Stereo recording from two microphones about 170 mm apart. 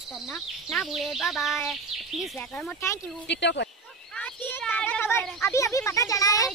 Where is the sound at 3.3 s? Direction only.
90° left.